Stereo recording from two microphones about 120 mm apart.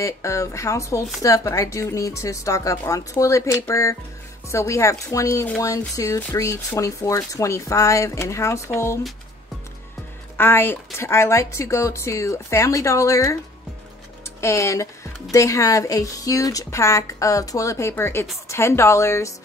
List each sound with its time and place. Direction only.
0.0 s speech: 25° left (ahead or behind)
10.3 s speech: 20° left (ahead or behind)